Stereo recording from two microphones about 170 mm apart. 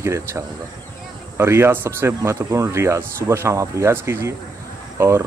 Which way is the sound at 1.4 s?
15° right (ahead or behind).